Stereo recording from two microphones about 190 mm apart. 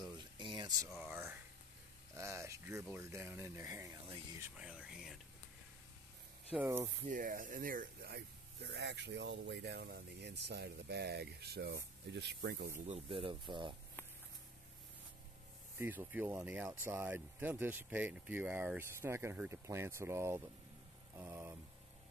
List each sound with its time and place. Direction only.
0.0 s a sound: 25° right (ahead or behind)
0.9 s a sound: 10° right (ahead or behind)
2.1 s speech: 15° right (ahead or behind)
6.5 s speech: 10° right (ahead or behind)
7.1 s speech: 45° right (ahead or behind); by 12.7 s 60° right (ahead or behind)
12.7 s speech: 35° right (ahead or behind)
15.8 s speech: 10° right (ahead or behind)